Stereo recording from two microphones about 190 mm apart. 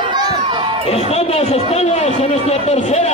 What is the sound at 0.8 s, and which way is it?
A man's voice, 35° left (ahead or behind).